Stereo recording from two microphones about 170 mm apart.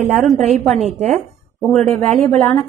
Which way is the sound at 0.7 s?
40° right (ahead or behind).